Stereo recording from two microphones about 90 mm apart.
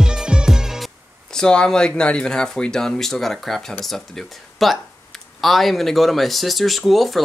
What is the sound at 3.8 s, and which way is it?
Speech, 5° left (ahead or behind).